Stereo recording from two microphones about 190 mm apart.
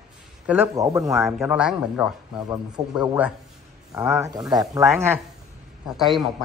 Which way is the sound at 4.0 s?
15° right (ahead or behind).